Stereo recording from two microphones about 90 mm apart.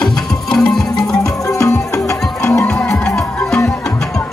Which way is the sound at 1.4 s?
35° left (ahead or behind).